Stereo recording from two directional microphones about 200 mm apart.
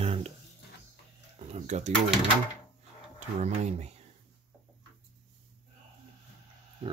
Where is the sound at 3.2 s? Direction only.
35° right (ahead or behind).